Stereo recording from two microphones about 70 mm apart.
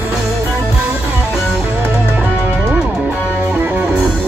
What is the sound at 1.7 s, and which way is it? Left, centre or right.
Music, right.